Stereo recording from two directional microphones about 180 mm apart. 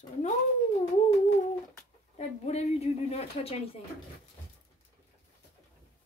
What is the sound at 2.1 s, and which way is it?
A woman's voice, 35° left (ahead or behind).